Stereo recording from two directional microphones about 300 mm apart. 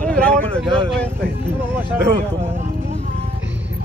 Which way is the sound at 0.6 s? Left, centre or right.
Centre.